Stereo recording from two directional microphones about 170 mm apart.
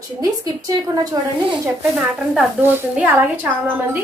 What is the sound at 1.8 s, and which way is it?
A woman's voice, 5° right (ahead or behind).